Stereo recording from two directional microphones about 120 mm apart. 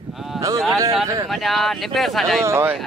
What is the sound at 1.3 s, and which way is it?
Speech, centre (ahead or behind).